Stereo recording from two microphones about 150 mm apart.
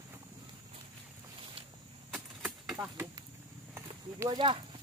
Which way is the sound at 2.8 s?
25° right (ahead or behind).